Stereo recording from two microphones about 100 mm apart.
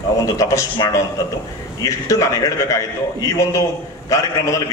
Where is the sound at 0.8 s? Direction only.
45° left (ahead or behind).